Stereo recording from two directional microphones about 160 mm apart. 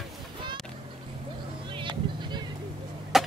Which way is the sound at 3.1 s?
Centre (ahead or behind).